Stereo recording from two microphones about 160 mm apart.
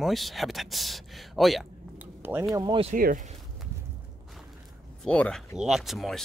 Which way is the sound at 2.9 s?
60° right (ahead or behind).